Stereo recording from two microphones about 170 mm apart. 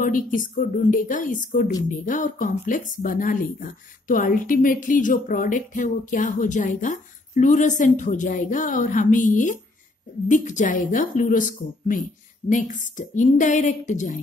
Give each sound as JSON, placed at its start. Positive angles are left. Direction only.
{"t": 0.0, "sound": "speech", "side_deg": 50}